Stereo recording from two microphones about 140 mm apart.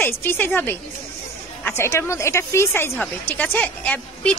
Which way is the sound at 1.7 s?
20° left (ahead or behind).